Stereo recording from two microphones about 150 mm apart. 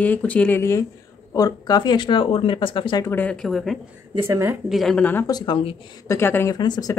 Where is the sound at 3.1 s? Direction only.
10° left (ahead or behind).